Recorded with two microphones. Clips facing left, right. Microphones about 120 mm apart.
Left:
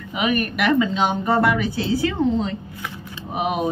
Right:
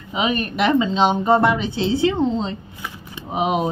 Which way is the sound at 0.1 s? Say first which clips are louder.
Even; 25° right (ahead or behind).